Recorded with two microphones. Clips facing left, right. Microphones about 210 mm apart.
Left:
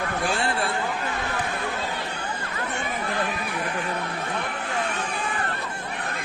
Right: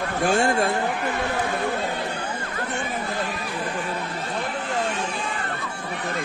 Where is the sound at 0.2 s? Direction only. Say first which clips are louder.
Right 8 dB; 45° right (ahead or behind).